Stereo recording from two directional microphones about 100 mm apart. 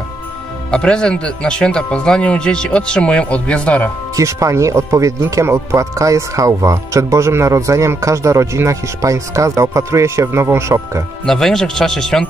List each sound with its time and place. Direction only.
0.7 s speech: 10° left (ahead or behind)
4.1 s speech: 30° right (ahead or behind)
11.2 s speech: 5° left (ahead or behind)